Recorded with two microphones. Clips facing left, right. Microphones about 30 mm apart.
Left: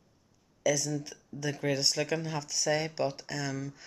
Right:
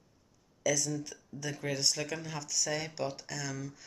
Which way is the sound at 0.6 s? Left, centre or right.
Centre.